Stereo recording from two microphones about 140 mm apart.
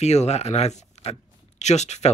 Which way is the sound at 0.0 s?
55° left (ahead or behind).